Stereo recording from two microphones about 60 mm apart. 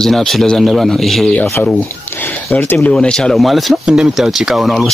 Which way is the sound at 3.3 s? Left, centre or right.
Centre.